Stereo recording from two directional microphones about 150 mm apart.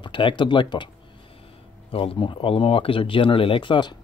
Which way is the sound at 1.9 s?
40° left (ahead or behind).